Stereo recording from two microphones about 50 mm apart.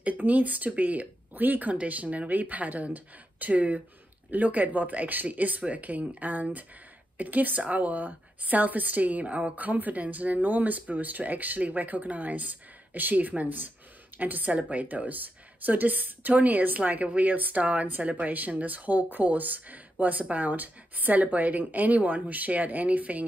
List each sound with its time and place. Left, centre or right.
0.0 s a woman's voice: right